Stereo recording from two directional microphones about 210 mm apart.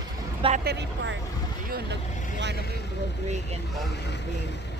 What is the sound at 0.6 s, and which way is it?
Speech, 60° right (ahead or behind).